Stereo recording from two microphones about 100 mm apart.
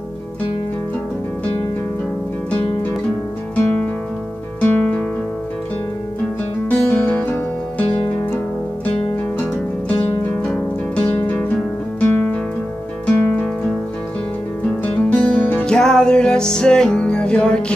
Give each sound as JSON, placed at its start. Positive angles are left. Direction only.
{"t": 3.5, "sound": "music", "side_deg": 15}
{"t": 6.8, "sound": "music", "side_deg": 20}
{"t": 10.4, "sound": "music", "side_deg": 10}
{"t": 14.8, "sound": "music", "side_deg": 15}